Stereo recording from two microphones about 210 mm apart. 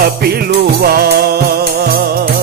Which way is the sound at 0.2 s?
45° right (ahead or behind).